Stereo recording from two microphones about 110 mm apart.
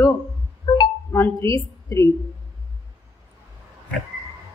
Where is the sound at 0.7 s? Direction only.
45° left (ahead or behind).